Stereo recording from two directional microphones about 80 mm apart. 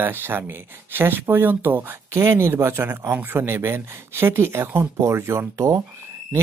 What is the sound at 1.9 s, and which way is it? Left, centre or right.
Speech, right.